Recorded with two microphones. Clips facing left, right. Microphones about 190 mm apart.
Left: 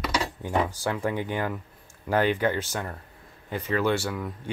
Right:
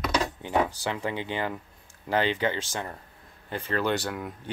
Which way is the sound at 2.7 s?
5° right (ahead or behind).